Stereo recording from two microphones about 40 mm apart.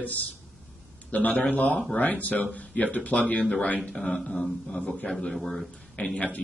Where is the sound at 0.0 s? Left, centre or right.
Left.